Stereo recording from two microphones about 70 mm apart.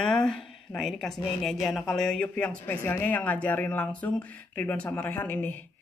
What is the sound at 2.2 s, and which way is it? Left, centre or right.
Speech, centre.